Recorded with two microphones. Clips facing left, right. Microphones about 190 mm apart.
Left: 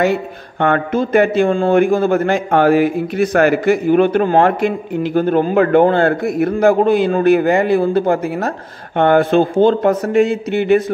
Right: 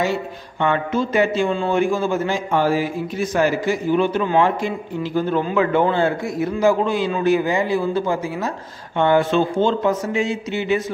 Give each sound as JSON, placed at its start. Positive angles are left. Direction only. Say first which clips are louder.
{"t": 0.0, "sound": "speech", "louder": "left 6 dB", "side_deg": 55}